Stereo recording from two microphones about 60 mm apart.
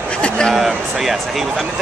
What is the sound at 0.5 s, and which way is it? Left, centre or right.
Speech, centre.